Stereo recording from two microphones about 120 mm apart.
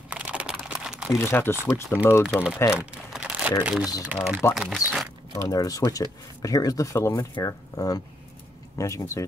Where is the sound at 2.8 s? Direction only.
10° right (ahead or behind).